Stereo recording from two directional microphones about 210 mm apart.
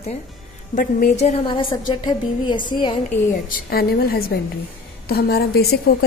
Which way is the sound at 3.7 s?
45° left (ahead or behind).